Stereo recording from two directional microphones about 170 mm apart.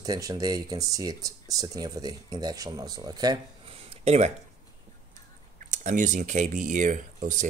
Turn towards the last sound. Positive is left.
turn(degrees=-50)  # may be behind; listen again after turning